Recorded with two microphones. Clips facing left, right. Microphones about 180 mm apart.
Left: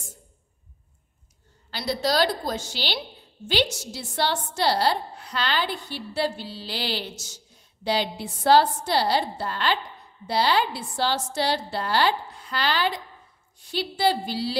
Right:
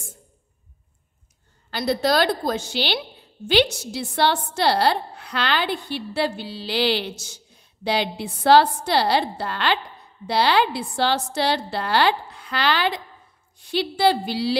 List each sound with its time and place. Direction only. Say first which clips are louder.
1.7 s a woman's voice: right 4 dB; 55° right (ahead or behind); by 14.6 s 75° right (ahead or behind)